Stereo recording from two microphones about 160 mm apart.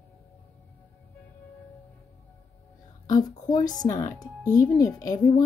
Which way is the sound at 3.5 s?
25° left (ahead or behind).